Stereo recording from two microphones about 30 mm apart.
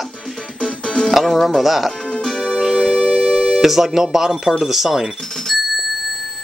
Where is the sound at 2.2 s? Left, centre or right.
Left.